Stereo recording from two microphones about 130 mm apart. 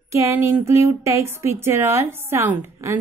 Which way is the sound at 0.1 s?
20° right (ahead or behind).